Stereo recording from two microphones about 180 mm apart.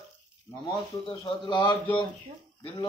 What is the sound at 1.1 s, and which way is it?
Speech, 30° left (ahead or behind).